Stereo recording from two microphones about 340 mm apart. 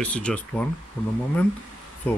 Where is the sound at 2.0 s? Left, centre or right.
Centre.